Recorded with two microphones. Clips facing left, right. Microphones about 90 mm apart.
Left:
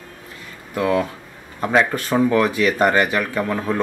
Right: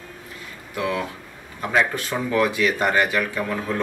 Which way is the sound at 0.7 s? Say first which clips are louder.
Left 6 dB; 40° left (ahead or behind).